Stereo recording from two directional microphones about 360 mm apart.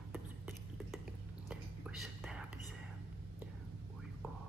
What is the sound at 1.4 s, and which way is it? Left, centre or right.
Whispering, centre.